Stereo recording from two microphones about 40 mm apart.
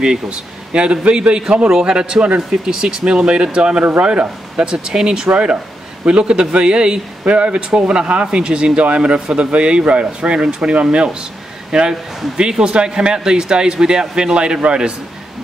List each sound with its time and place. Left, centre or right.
0.0 s speech: right
4.6 s speech: centre